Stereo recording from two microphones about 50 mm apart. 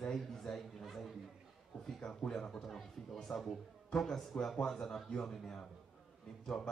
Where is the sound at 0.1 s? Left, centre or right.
Centre.